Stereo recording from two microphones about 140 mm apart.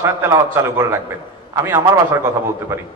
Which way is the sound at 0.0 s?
20° right (ahead or behind).